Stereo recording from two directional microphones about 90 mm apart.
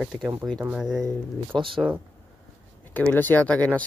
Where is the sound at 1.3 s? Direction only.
70° right (ahead or behind).